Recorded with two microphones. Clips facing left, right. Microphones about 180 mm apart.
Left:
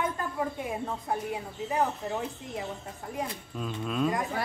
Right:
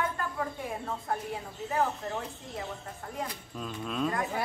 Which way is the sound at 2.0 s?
10° left (ahead or behind).